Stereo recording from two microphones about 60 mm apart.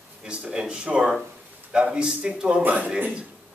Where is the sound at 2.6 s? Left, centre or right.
Right.